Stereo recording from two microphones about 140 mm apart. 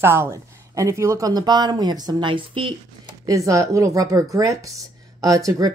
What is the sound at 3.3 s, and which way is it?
Speech, 25° right (ahead or behind).